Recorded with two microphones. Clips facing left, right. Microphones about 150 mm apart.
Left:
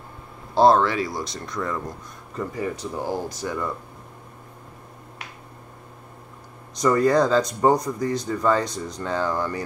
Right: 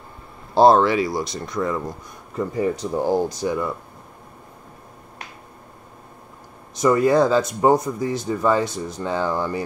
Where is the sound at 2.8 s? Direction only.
20° right (ahead or behind).